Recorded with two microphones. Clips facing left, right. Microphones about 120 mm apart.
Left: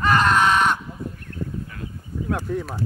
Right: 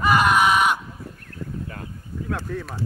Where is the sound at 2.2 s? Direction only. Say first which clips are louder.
Left 4 dB; 15° left (ahead or behind).